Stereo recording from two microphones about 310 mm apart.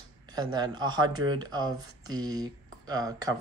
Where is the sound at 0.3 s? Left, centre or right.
Centre.